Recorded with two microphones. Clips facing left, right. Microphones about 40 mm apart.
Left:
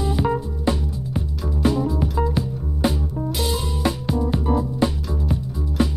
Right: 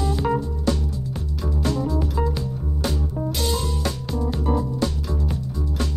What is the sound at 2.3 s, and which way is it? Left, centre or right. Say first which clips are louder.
Music: left 3 dB; centre.